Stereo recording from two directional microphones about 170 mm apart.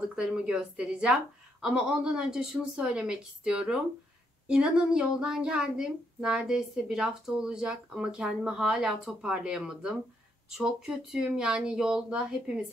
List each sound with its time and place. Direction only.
0.1 s speech: 5° right (ahead or behind)